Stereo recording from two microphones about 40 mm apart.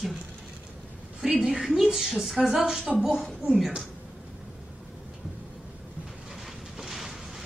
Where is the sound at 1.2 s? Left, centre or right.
Centre.